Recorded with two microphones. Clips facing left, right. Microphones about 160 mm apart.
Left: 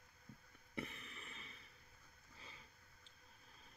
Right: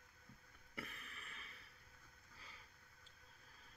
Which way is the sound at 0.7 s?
25° left (ahead or behind).